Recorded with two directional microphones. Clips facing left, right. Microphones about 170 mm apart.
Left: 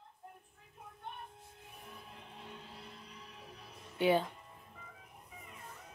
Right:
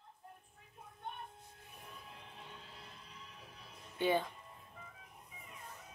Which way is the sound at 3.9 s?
15° left (ahead or behind).